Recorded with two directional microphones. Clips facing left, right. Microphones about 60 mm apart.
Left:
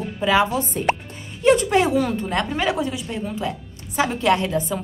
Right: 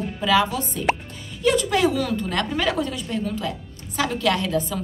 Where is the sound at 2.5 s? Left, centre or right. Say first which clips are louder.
Left 1 dB; centre.